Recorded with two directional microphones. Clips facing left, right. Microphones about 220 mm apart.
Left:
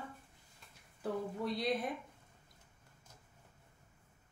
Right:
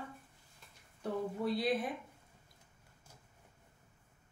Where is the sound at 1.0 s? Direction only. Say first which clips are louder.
Right 2 dB; centre (ahead or behind).